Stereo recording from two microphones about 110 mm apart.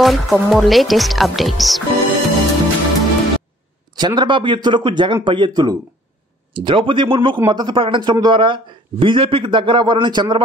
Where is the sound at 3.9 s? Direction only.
45° right (ahead or behind).